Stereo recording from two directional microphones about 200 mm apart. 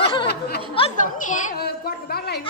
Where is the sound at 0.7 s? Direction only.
35° left (ahead or behind); by 2.4 s 55° left (ahead or behind).